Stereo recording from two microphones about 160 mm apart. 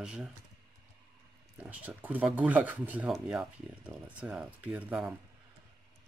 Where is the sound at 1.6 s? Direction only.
10° right (ahead or behind).